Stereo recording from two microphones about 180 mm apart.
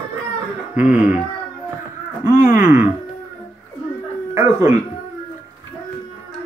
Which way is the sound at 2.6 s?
10° right (ahead or behind).